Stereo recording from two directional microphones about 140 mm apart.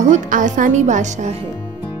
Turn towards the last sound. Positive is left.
turn(degrees=-55)  # may be behind; listen again after turning